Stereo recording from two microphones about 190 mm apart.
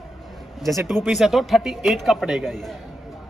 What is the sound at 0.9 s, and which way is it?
A man's voice, centre (ahead or behind).